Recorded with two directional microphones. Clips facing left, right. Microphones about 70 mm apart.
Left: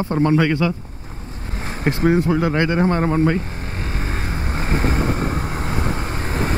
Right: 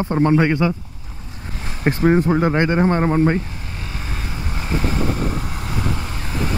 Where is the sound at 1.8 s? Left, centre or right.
Right.